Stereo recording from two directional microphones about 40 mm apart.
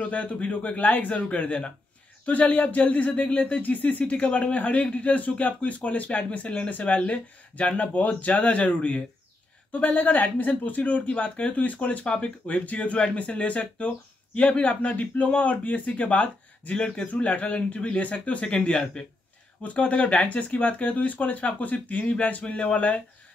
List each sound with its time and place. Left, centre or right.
0.0 s speech: left
9.9 s speech: left
17.9 s speech: left
19.6 s speech: left